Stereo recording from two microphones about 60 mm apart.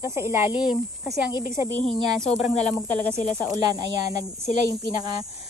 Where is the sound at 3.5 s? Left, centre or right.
Right.